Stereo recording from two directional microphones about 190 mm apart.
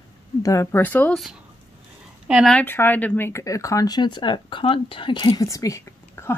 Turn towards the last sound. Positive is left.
turn(degrees=15)  # may be behind; listen again after turning